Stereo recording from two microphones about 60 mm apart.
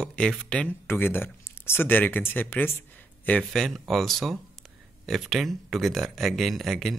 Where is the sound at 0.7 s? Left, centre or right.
Left.